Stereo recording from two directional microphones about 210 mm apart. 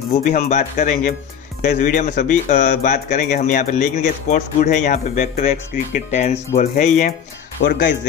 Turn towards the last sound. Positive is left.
turn(degrees=60)  # may be behind; listen again after turning